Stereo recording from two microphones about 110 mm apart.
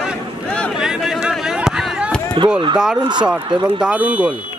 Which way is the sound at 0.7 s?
5° right (ahead or behind).